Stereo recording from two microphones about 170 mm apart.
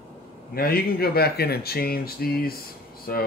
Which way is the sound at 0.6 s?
65° left (ahead or behind).